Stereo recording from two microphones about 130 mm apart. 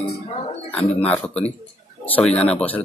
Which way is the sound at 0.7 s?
10° left (ahead or behind).